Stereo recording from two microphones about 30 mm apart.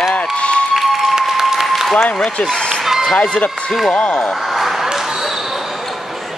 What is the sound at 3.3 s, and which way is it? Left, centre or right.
Speech, left.